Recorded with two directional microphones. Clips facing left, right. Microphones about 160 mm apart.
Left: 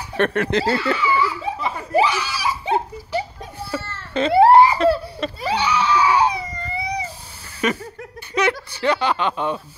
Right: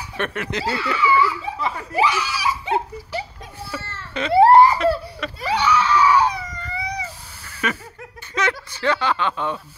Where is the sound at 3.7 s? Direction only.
30° left (ahead or behind).